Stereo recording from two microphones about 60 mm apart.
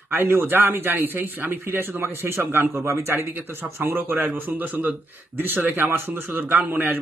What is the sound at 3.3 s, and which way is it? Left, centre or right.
Speech, right.